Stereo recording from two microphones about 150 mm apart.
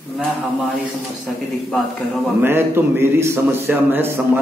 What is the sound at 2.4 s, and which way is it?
A man's voice, 15° right (ahead or behind).